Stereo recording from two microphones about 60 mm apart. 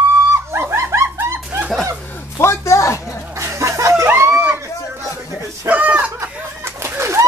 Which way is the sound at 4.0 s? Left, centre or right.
Right.